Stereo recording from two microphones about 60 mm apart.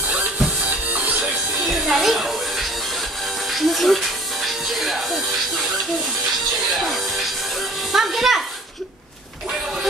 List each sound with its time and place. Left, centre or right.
0.1 s music: right
1.7 s music: centre
6.8 s music: centre